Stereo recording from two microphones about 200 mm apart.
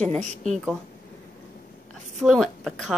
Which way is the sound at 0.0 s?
35° right (ahead or behind).